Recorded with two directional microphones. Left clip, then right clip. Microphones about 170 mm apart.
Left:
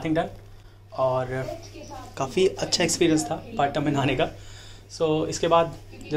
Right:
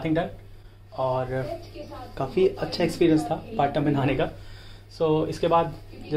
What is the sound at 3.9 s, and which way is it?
Speech, centre (ahead or behind).